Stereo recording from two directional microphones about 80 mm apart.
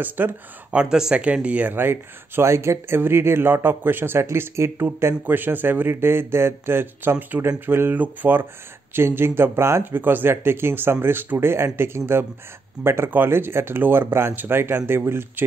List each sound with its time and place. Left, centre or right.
0.0 s speech: right